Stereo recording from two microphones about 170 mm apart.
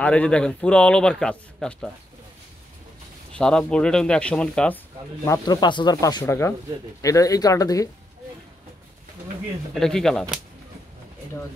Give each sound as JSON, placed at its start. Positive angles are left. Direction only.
{"t": 0.0, "sound": "a man's voice", "side_deg": 5}
{"t": 3.3, "sound": "a man's voice", "side_deg": 5}
{"t": 5.2, "sound": "speech", "side_deg": 20}
{"t": 9.8, "sound": "a man's voice", "side_deg": 5}